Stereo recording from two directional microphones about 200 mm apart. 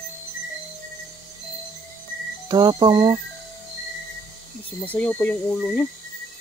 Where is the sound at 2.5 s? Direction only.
20° right (ahead or behind).